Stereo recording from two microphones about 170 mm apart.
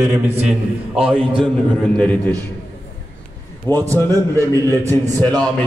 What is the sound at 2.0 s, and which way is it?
Speech, 10° left (ahead or behind).